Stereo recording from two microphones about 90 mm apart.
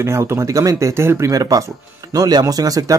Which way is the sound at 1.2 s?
40° right (ahead or behind).